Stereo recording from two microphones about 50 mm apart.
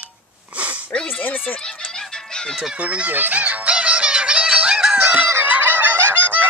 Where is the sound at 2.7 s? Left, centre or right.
Right.